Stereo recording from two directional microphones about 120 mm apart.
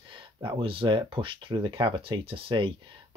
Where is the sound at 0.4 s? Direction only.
45° right (ahead or behind).